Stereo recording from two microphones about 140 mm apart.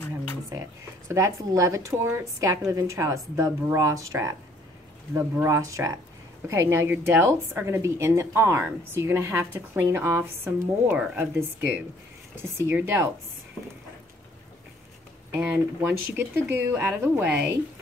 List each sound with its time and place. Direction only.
0.5 s a woman's voice: 25° right (ahead or behind)
12.5 s a woman's voice: 15° right (ahead or behind)
15.3 s a woman's voice: 15° right (ahead or behind)